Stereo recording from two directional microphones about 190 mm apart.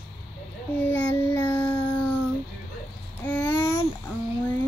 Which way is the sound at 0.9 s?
10° left (ahead or behind).